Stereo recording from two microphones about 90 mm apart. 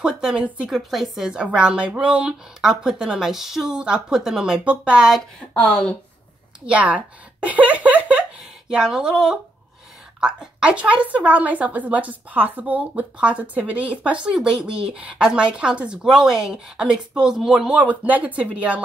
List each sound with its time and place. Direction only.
0.0 s a woman's voice: 5° right (ahead or behind)
5.5 s speech: 5° left (ahead or behind)
6.6 s a woman's voice: 15° right (ahead or behind)
7.4 s a sound: 15° right (ahead or behind)
8.6 s a woman's voice: 10° right (ahead or behind)
17.7 s a woman's voice: 15° right (ahead or behind)